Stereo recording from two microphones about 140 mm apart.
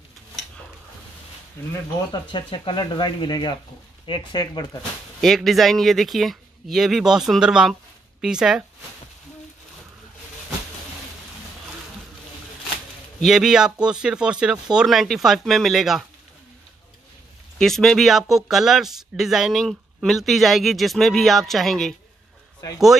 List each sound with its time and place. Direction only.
1.6 s speech: 20° left (ahead or behind)
2.3 s speech: 35° left (ahead or behind)
5.2 s speech: centre (ahead or behind)
13.2 s speech: 5° right (ahead or behind)
17.6 s speech: 5° left (ahead or behind)